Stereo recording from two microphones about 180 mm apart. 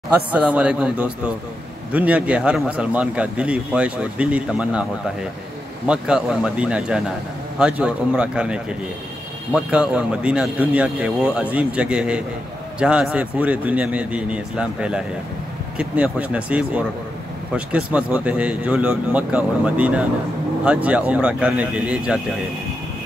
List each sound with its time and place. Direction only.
0.1 s a man's voice: 10° right (ahead or behind)
5.9 s a man's voice: 5° right (ahead or behind)